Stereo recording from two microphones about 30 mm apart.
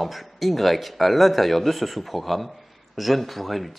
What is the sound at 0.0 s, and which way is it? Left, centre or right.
Speech, centre.